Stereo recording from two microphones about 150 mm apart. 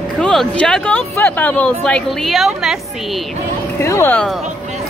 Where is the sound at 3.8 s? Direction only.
15° left (ahead or behind).